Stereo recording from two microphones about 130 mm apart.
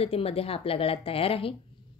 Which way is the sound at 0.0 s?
50° left (ahead or behind).